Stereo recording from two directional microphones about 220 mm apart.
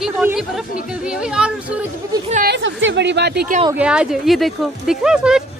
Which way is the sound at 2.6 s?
55° right (ahead or behind).